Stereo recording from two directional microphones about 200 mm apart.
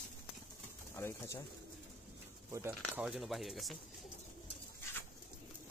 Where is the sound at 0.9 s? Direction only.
15° left (ahead or behind).